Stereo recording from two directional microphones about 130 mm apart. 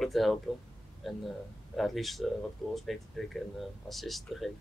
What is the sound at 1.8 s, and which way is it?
Speech, centre (ahead or behind).